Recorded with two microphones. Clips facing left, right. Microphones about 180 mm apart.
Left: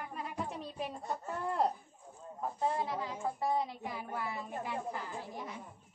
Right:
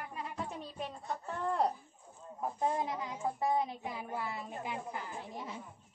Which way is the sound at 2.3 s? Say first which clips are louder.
Right 1 dB; 15° right (ahead or behind).